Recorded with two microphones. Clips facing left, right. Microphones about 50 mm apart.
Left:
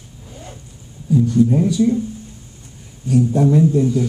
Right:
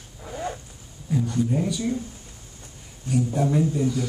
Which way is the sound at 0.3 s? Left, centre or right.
Right.